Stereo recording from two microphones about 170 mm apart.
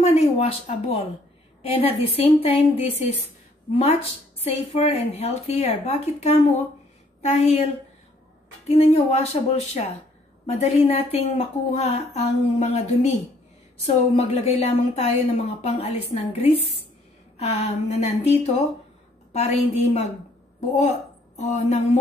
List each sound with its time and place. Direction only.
0.0 s a woman's voice: 35° left (ahead or behind)
8.6 s a woman's voice: 40° left (ahead or behind)
21.4 s a woman's voice: 40° left (ahead or behind)